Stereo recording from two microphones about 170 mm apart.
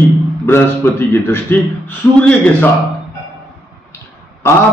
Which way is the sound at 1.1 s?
10° left (ahead or behind).